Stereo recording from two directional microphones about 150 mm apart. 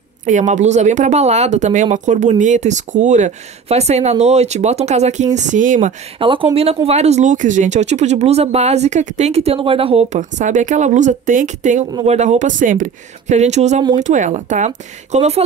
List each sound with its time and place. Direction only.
0.3 s speech: 55° right (ahead or behind)
6.1 s speech: 35° right (ahead or behind)